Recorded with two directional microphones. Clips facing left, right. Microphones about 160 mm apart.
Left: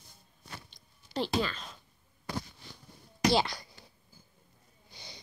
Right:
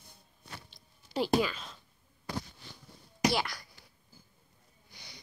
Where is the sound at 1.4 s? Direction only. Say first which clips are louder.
Right 2 dB; 10° right (ahead or behind).